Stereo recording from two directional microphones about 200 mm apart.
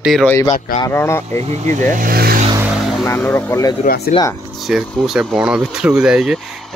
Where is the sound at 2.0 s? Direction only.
45° right (ahead or behind).